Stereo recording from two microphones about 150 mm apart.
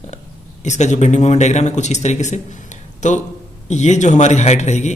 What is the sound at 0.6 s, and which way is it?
A man's voice, 50° left (ahead or behind).